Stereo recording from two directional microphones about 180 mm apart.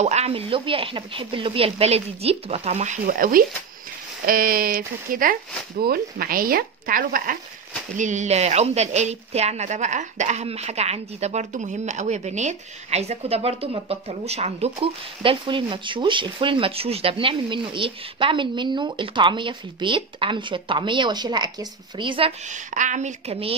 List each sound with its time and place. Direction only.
0.0 s a woman's voice: 35° right (ahead or behind)
22.5 s a woman's voice: 45° right (ahead or behind)